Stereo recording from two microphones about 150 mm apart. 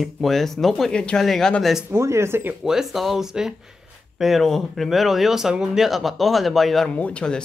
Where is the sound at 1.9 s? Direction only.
20° right (ahead or behind).